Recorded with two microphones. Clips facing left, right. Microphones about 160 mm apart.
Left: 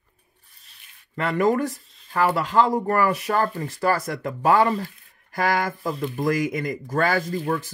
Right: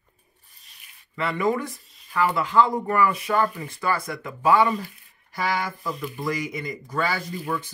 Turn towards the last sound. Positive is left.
turn(degrees=45)  # may be behind; listen again after turning